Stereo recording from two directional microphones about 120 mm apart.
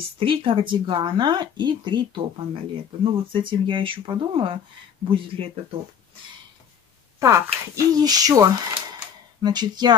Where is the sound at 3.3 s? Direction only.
45° right (ahead or behind).